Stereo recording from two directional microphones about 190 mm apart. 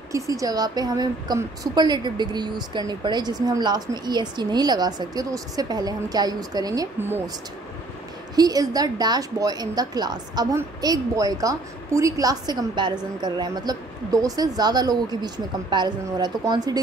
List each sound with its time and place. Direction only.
0.1 s a woman's voice: 15° right (ahead or behind)
8.4 s a woman's voice: 20° right (ahead or behind)